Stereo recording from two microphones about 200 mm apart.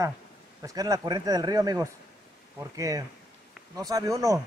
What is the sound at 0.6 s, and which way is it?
A man's voice, 15° right (ahead or behind).